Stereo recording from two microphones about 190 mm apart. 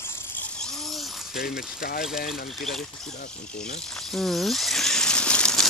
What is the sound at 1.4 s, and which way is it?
Speech, 50° left (ahead or behind).